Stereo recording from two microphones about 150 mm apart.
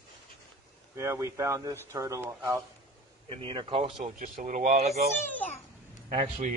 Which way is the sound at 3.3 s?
35° right (ahead or behind).